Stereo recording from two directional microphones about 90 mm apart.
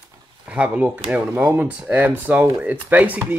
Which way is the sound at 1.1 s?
25° right (ahead or behind).